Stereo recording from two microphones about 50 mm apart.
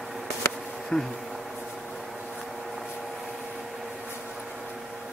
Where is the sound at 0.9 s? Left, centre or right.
Centre.